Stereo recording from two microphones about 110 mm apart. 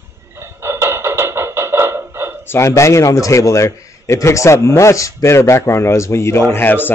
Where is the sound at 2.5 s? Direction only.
25° left (ahead or behind).